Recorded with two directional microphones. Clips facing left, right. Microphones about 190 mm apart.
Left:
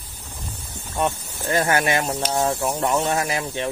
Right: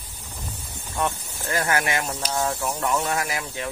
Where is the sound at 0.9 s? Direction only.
20° left (ahead or behind).